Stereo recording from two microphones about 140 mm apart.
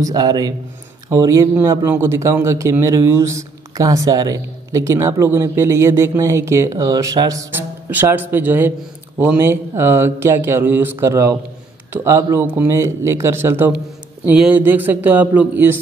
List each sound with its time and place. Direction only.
0.0 s a man's voice: 25° right (ahead or behind)